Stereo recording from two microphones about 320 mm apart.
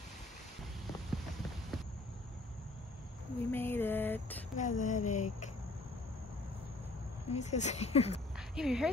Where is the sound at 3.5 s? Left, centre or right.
Centre.